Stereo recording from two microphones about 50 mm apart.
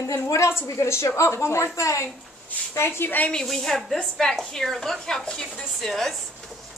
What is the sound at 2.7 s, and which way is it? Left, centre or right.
Speech, left.